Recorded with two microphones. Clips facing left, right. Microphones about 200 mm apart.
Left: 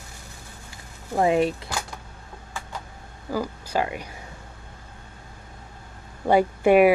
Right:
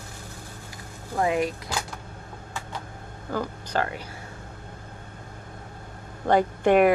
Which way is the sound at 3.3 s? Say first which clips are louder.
Left 2 dB; 10° left (ahead or behind).